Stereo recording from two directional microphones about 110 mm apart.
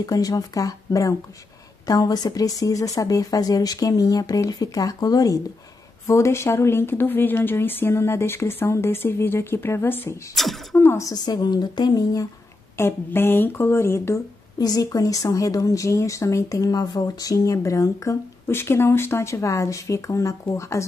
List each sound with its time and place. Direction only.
0.0 s a woman's voice: 35° left (ahead or behind)
10.3 s speech: centre (ahead or behind)
10.7 s a woman's voice: 25° left (ahead or behind)
11.2 s a woman's voice: 40° left (ahead or behind)
12.7 s a woman's voice: 20° left (ahead or behind)
14.6 s a woman's voice: 35° left (ahead or behind)